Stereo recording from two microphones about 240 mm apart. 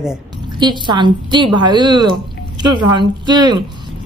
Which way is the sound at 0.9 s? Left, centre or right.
Centre.